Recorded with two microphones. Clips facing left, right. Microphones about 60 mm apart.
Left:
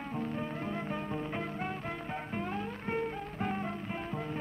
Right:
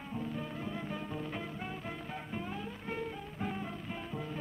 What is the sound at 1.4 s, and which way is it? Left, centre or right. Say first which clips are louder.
Music: left 4 dB; left.